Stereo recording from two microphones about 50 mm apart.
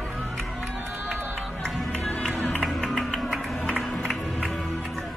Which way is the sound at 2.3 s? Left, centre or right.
Left.